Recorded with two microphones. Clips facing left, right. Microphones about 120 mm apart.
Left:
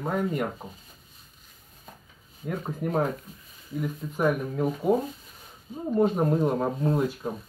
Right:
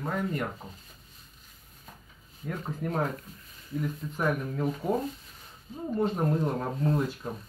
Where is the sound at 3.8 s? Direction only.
10° left (ahead or behind).